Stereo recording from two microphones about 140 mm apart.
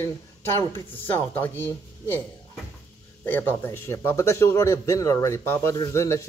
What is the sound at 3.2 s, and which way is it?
Speech, 15° left (ahead or behind).